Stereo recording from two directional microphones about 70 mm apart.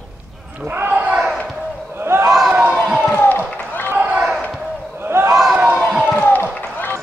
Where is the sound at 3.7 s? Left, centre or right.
Left.